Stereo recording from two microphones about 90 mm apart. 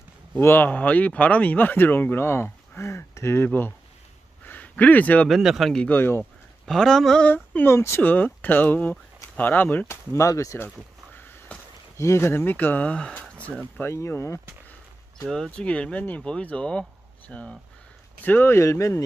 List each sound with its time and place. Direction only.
0.4 s speech: 25° left (ahead or behind)
5.3 s speech: centre (ahead or behind)
5.9 s speech: 25° left (ahead or behind)
6.6 s speech: 5° left (ahead or behind)
7.2 s a sound: 20° left (ahead or behind)
7.7 s speech: 30° left (ahead or behind)
8.0 s speech: 20° left (ahead or behind)
11.1 s sniff: 20° left (ahead or behind)
12.0 s speech: 30° left (ahead or behind); by 13.5 s 10° left (ahead or behind)
13.7 s speech: 30° left (ahead or behind)
15.2 s speech: 5° left (ahead or behind); by 19.0 s 35° left (ahead or behind)